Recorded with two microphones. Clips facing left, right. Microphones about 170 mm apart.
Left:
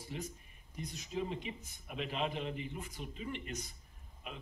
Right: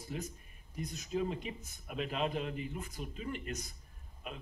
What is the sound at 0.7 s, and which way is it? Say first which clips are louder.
A man's voice: right 3 dB; 45° right (ahead or behind).